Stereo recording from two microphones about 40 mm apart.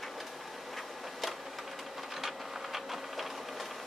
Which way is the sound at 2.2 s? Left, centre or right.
Centre.